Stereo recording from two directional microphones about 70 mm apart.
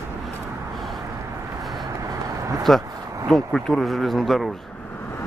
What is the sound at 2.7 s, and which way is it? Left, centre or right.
Speech, centre.